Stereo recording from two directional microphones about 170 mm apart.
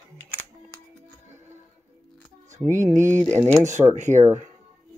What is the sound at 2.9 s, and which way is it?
Speech, 45° right (ahead or behind).